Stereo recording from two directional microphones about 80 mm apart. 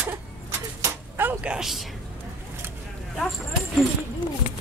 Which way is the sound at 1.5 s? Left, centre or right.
Centre.